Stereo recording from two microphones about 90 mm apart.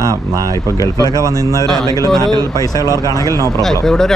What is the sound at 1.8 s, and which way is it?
Speech, 45° left (ahead or behind).